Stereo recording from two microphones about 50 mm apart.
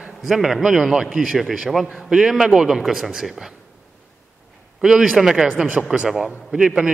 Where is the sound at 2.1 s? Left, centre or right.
Centre.